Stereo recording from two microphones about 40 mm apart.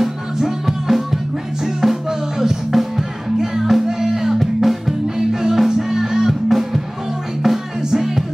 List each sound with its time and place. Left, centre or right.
0.0 s music: centre